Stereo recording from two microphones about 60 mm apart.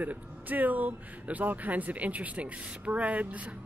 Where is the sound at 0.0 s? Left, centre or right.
Right.